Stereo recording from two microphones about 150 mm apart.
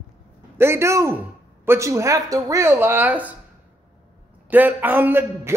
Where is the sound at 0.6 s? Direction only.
15° right (ahead or behind).